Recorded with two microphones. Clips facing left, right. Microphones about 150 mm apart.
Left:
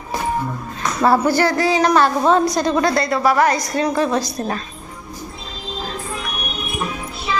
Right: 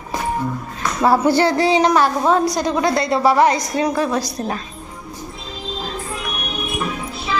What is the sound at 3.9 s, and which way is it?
Speech, 5° right (ahead or behind).